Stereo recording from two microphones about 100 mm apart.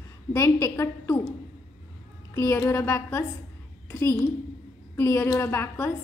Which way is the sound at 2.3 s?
30° left (ahead or behind).